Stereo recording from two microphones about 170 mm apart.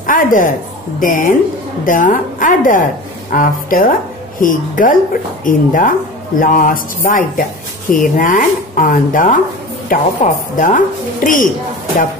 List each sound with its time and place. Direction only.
0.0 s a woman's voice: 50° left (ahead or behind)